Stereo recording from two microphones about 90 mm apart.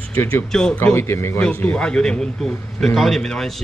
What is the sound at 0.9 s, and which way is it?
Speech, 30° left (ahead or behind).